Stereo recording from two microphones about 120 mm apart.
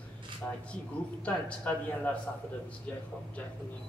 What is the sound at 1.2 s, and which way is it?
Speech, 10° left (ahead or behind).